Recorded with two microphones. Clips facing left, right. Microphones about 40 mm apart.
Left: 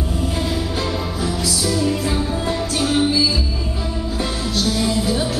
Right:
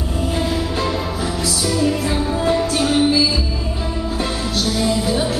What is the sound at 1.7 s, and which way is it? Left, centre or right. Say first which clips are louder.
Music: right 2 dB; centre.